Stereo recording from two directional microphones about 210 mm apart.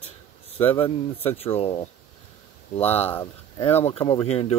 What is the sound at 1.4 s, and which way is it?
Speech, 30° left (ahead or behind).